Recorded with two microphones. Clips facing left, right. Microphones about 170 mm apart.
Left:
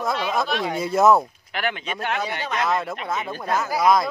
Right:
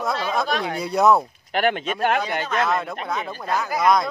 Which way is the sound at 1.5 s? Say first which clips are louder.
Right 6 dB; 45° right (ahead or behind).